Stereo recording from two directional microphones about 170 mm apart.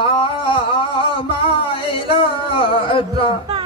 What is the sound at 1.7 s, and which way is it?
Male singing, 30° left (ahead or behind).